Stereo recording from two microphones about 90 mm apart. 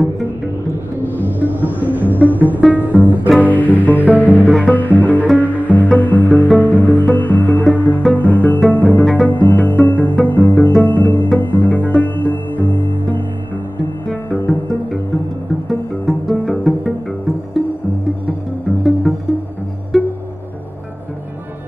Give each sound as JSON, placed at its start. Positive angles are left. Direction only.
{"t": 1.2, "sound": "music", "side_deg": -20}
{"t": 2.0, "sound": "music", "side_deg": 20}
{"t": 2.7, "sound": "music", "side_deg": -20}
{"t": 3.3, "sound": "music", "side_deg": 20}
{"t": 4.0, "sound": "music", "side_deg": -15}
{"t": 4.6, "sound": "music", "side_deg": 20}
{"t": 14.3, "sound": "music", "side_deg": 20}
{"t": 16.1, "sound": "music", "side_deg": 0}
{"t": 19.9, "sound": "music", "side_deg": 0}